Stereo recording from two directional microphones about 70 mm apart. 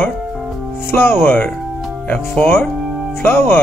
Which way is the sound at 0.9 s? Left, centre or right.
Left.